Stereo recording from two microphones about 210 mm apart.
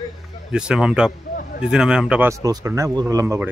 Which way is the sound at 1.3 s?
45° left (ahead or behind).